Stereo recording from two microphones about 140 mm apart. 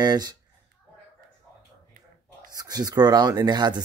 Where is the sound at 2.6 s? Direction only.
30° right (ahead or behind).